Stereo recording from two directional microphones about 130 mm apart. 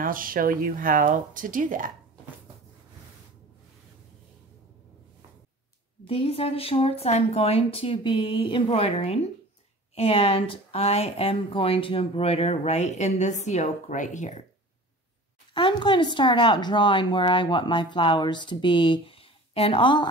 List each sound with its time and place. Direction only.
0.0 s speech: 90° right
6.0 s speech: 45° left (ahead or behind); by 14.4 s 70° left (ahead or behind)
15.5 s speech: 40° left (ahead or behind)